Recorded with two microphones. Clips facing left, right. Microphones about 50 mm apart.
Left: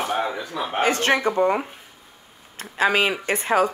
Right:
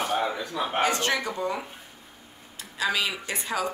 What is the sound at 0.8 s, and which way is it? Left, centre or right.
Speech, left.